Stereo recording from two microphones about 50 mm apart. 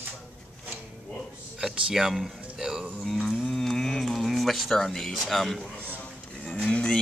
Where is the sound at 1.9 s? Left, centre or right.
Centre.